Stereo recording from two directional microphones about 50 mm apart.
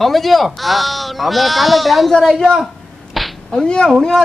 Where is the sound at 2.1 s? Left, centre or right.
Centre.